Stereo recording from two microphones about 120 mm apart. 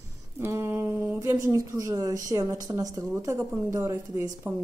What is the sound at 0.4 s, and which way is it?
A woman's voice, 20° right (ahead or behind).